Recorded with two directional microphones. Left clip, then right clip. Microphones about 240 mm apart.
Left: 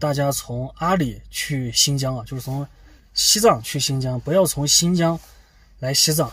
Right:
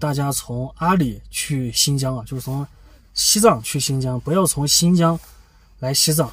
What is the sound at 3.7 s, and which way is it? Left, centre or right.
Speech, centre.